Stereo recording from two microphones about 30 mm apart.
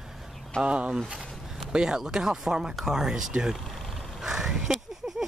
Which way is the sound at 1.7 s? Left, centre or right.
Right.